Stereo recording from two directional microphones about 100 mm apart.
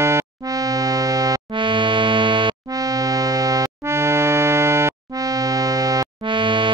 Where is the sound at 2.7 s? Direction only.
35° right (ahead or behind).